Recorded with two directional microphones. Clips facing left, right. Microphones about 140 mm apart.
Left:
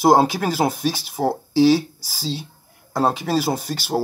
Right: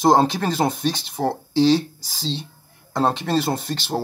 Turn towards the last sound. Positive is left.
turn(degrees=5)  # may be behind; listen again after turning